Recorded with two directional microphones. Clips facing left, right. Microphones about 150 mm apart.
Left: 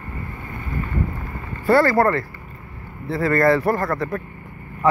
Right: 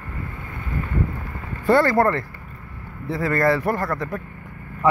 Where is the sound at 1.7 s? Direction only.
20° right (ahead or behind).